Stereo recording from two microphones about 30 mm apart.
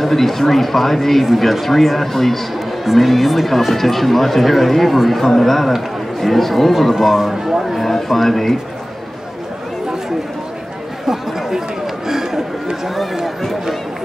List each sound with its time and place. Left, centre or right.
0.0 s speech: centre
7.8 s speech: centre
12.1 s a sound: centre
12.8 s speech: centre